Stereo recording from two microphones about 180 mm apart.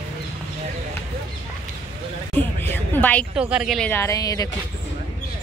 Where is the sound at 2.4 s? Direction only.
10° left (ahead or behind).